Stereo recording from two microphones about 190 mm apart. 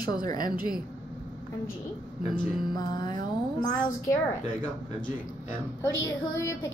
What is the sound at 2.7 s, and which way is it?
A woman's voice, 20° left (ahead or behind).